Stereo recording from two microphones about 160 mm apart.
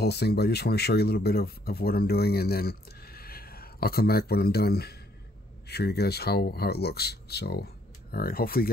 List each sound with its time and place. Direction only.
0.0 s speech: 90° left
5.7 s speech: 90° left
8.1 s speech: 70° left (ahead or behind)